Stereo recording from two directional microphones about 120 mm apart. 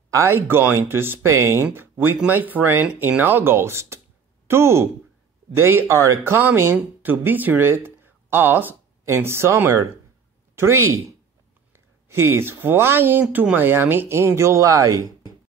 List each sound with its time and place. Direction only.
0.1 s speech: 25° right (ahead or behind)